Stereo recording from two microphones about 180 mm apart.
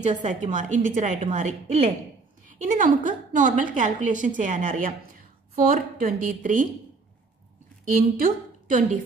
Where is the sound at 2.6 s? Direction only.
45° right (ahead or behind).